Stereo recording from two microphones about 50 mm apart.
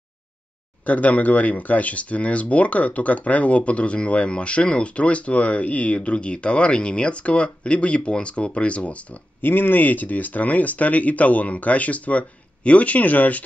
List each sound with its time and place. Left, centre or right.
0.8 s speech: left
9.4 s speech: left